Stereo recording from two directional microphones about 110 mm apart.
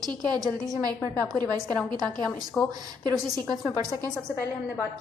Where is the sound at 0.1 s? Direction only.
40° right (ahead or behind).